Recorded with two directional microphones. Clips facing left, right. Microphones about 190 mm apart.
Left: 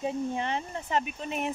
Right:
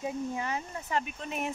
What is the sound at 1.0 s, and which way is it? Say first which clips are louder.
Speech: left 3 dB; centre (ahead or behind).